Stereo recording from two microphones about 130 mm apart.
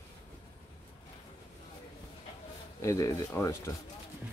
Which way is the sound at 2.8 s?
25° left (ahead or behind).